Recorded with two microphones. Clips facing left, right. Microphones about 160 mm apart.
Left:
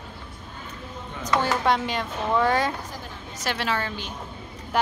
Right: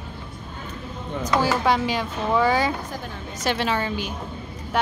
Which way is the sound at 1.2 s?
5° right (ahead or behind).